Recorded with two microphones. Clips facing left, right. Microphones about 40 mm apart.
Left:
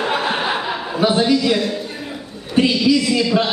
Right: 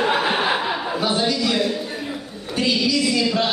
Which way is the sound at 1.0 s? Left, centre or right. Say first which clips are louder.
Left 8 dB; centre.